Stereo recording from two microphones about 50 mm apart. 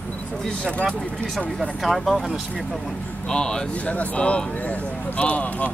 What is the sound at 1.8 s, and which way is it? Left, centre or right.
Speech, centre.